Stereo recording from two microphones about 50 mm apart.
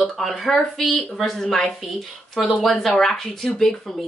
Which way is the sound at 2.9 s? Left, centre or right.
Centre.